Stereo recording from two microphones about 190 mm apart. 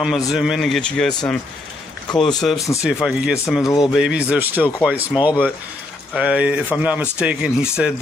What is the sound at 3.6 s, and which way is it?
Speech, 20° left (ahead or behind).